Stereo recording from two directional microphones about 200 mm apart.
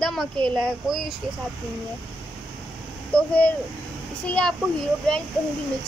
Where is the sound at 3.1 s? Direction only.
5° left (ahead or behind).